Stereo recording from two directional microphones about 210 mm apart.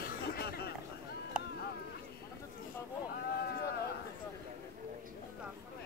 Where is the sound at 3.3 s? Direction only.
50° left (ahead or behind).